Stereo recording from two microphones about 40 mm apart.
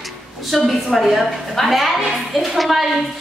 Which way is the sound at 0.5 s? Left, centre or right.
Centre.